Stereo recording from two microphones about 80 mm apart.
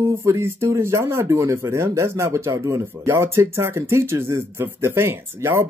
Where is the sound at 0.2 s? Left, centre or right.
Right.